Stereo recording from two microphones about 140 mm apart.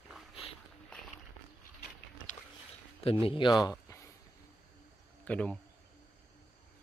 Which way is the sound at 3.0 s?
40° left (ahead or behind).